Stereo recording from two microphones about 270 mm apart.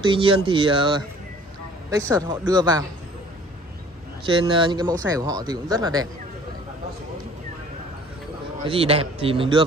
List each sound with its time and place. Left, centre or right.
0.1 s a man's voice: centre
4.3 s speech: centre
8.6 s a man's voice: right